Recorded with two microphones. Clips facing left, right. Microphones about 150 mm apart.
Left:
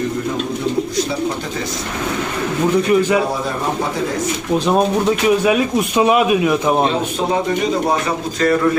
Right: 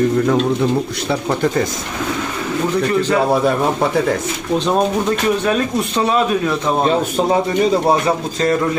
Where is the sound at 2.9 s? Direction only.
15° left (ahead or behind).